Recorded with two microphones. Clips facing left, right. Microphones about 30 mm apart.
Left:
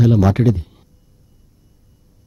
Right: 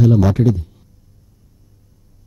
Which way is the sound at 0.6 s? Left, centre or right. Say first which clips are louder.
Even; left.